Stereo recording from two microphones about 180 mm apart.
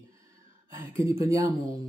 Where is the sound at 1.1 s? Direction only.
15° right (ahead or behind).